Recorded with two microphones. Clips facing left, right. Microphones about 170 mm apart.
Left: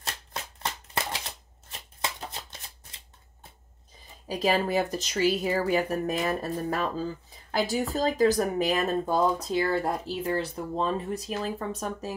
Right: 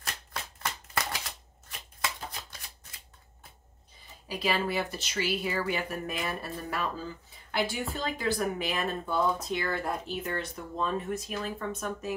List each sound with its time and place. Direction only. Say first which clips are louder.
0.0 s shuffling cards: left 2 dB; 25° left (ahead or behind)
4.3 s speech: left 5 dB; 40° left (ahead or behind)